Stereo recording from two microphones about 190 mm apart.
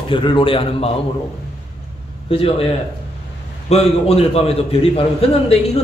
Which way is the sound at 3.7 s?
30° left (ahead or behind).